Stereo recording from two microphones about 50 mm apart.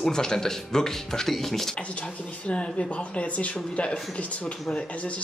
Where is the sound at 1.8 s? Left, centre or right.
Left.